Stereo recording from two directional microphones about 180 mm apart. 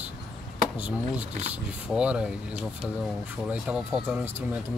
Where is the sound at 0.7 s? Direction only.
5° right (ahead or behind).